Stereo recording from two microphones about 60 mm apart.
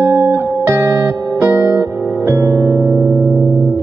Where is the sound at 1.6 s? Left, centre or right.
Right.